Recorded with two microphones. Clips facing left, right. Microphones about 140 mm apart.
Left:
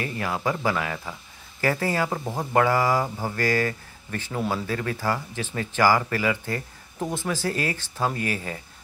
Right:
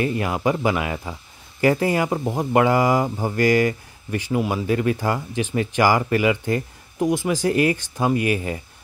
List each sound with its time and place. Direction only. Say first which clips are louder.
0.0 s speech: right 6 dB; 20° right (ahead or behind)